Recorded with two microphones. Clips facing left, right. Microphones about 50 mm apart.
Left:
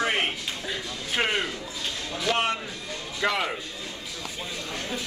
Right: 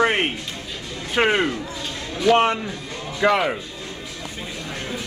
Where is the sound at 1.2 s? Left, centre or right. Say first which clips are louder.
Right 8 dB; right.